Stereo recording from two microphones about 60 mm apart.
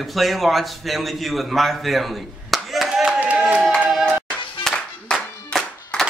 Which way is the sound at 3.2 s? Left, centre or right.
Right.